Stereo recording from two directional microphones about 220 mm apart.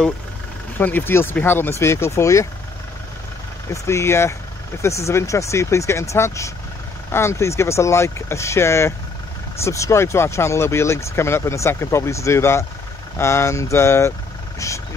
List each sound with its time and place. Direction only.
0.7 s speech: 10° left (ahead or behind)
3.7 s speech: 10° left (ahead or behind)